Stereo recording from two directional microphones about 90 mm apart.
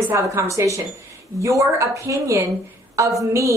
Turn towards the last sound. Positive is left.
turn(degrees=-35)  # may be behind; listen again after turning